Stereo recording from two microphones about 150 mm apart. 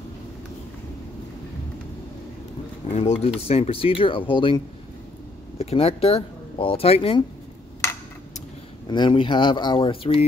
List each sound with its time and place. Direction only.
2.9 s speech: 45° left (ahead or behind)
5.6 s speech: 40° left (ahead or behind)
8.8 s speech: 30° left (ahead or behind)